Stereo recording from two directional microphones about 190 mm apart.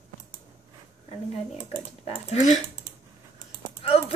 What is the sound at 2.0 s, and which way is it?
Speech, 35° left (ahead or behind).